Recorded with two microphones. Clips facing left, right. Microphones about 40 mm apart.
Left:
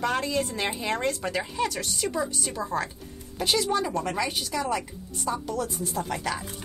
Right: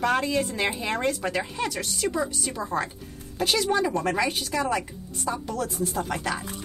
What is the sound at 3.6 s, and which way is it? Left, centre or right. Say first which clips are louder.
Speech: right 2 dB; right.